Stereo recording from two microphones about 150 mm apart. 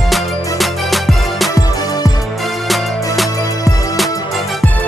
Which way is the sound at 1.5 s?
25° left (ahead or behind).